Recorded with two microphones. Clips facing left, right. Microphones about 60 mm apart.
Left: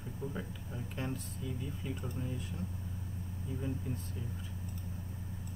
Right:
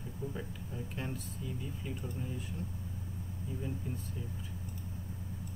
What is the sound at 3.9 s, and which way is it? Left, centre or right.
Speech, centre.